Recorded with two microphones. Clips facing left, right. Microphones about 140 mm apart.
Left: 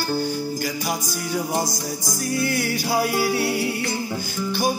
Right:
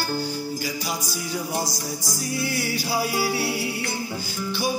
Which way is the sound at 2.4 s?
50° left (ahead or behind).